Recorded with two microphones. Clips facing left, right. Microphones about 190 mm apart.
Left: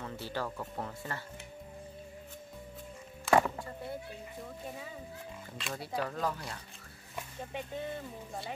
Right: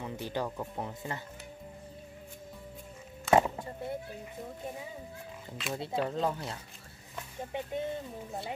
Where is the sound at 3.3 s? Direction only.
20° right (ahead or behind).